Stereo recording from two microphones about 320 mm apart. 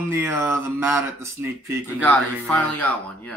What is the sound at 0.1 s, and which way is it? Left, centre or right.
Speech, centre.